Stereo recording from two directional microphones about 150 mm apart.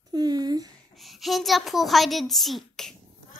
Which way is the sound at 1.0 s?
Centre (ahead or behind).